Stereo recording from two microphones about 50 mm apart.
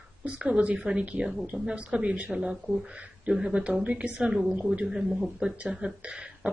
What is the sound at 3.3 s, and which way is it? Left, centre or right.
Speech, centre.